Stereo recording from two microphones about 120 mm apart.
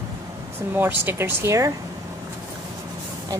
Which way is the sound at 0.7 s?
15° right (ahead or behind).